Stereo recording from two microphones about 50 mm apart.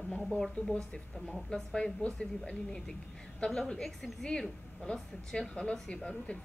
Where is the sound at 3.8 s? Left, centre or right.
Centre.